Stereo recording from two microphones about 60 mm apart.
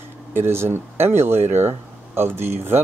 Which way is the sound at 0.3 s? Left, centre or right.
Right.